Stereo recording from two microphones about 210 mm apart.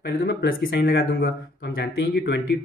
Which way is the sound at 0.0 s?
50° left (ahead or behind).